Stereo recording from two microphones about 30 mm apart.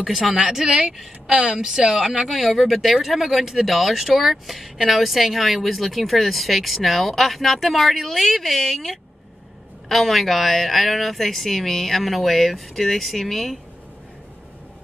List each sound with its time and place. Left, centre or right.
0.0 s a woman's voice: centre
2.0 s a woman's voice: centre